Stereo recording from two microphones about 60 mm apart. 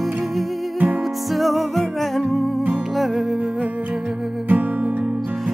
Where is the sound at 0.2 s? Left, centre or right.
Centre.